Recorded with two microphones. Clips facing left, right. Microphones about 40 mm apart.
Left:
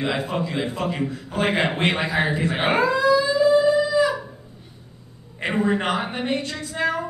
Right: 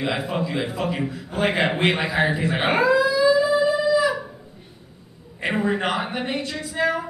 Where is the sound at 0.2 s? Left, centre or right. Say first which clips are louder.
Even; centre.